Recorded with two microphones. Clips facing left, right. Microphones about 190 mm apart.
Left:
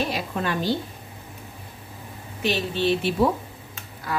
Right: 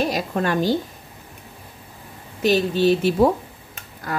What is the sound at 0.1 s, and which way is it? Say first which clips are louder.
Speech: right 5 dB; 45° right (ahead or behind).